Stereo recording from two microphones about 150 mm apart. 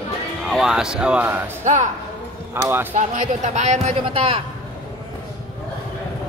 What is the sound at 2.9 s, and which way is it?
A woman's voice, 55° right (ahead or behind).